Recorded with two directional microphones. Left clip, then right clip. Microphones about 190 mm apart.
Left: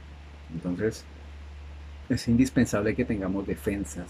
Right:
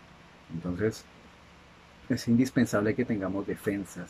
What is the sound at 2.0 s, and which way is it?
Speech, centre (ahead or behind).